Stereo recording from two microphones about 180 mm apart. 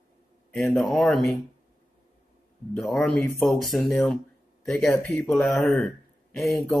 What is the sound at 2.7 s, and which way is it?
Speech, centre (ahead or behind).